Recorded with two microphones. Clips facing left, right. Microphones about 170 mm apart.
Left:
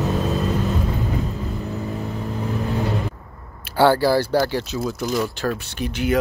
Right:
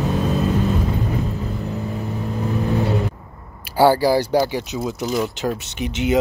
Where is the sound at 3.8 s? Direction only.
10° right (ahead or behind).